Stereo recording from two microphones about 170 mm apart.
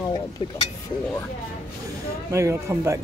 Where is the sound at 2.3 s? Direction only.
15° right (ahead or behind).